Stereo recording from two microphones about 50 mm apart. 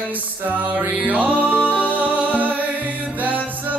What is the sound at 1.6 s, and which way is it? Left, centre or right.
Music, right.